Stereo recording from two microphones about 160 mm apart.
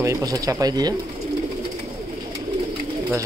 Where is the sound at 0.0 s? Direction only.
20° right (ahead or behind).